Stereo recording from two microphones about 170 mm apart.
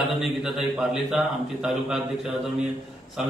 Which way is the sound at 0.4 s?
Centre (ahead or behind).